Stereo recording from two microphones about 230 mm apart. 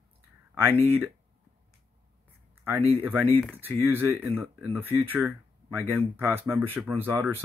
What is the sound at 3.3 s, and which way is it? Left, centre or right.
Speech, centre.